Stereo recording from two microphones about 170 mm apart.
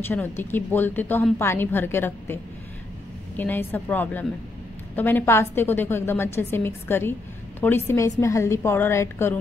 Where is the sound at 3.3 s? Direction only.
10° left (ahead or behind).